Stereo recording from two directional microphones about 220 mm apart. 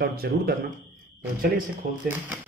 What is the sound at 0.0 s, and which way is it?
Speech, 45° right (ahead or behind).